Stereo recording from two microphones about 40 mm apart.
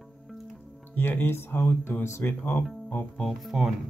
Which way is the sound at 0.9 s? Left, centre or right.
Left.